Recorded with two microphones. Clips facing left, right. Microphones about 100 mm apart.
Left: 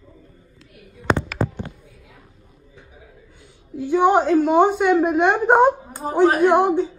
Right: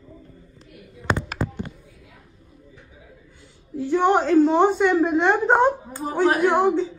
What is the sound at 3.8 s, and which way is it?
A woman's voice, 15° left (ahead or behind).